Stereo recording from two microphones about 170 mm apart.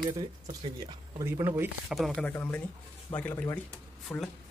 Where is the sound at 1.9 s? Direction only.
Centre (ahead or behind).